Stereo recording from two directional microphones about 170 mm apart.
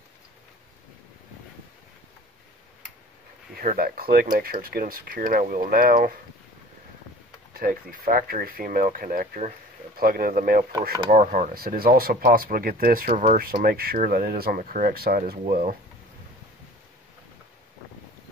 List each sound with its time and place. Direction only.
3.5 s speech: 60° right (ahead or behind)
7.5 s speech: 60° right (ahead or behind)
13.4 s speech: 60° right (ahead or behind)